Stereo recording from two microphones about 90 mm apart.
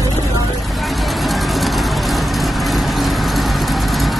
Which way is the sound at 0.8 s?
Centre (ahead or behind).